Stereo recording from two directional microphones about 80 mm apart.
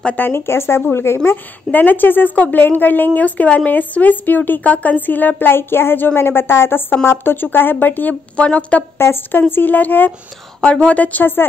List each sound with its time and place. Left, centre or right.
0.0 s a woman's voice: left
8.9 s a woman's voice: left